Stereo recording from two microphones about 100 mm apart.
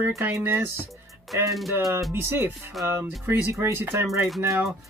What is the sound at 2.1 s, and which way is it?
Speech, 25° right (ahead or behind).